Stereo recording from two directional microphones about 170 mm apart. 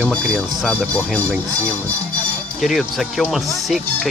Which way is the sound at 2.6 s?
Centre (ahead or behind).